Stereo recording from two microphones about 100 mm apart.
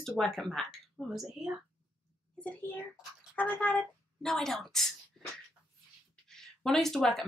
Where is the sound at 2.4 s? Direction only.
15° left (ahead or behind).